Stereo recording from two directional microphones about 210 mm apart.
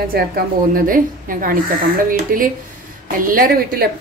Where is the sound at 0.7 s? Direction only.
40° right (ahead or behind).